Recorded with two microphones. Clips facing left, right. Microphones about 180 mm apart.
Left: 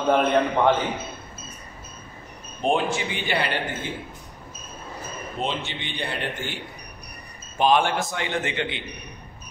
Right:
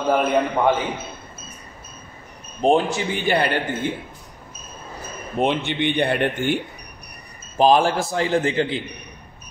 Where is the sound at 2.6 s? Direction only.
40° right (ahead or behind).